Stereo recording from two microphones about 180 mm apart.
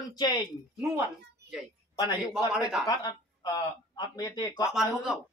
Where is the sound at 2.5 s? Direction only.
5° right (ahead or behind).